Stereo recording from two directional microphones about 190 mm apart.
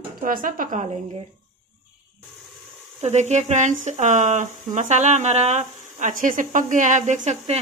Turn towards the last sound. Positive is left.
turn(degrees=-35)  # may be behind; listen again after turning